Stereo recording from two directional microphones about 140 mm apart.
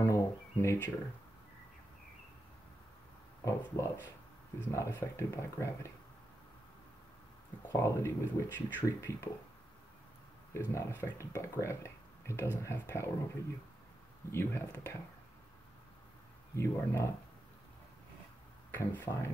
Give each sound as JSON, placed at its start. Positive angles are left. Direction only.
{"t": 0.0, "sound": "a sound", "side_deg": 20}
{"t": 3.4, "sound": "speech", "side_deg": 15}
{"t": 7.6, "sound": "speech", "side_deg": 20}
{"t": 10.5, "sound": "speech", "side_deg": 20}
{"t": 14.3, "sound": "speech", "side_deg": 15}
{"t": 16.5, "sound": "speech", "side_deg": 20}
{"t": 18.7, "sound": "speech", "side_deg": 15}